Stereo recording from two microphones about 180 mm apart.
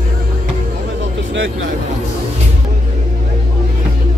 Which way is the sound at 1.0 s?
90° right.